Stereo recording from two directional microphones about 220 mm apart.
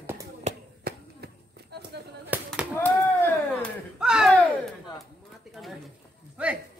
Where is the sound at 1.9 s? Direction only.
50° right (ahead or behind).